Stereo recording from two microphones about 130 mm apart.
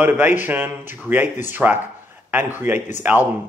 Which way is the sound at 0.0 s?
15° right (ahead or behind).